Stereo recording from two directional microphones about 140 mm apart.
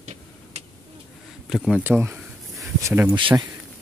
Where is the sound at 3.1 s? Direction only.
35° right (ahead or behind).